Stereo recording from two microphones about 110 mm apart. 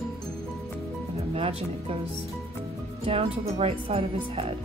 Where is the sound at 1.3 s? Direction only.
60° right (ahead or behind).